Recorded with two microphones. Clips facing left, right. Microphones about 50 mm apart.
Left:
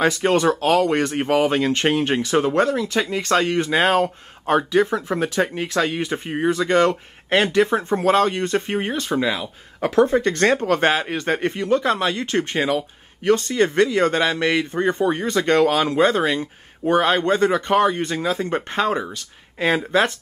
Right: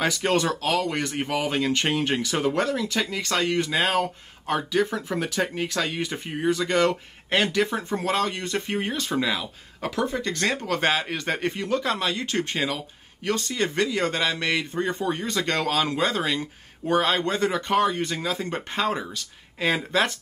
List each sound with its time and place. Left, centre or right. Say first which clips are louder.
0.3 s speech: left 6 dB; left
9.8 s speech: left 10 dB; left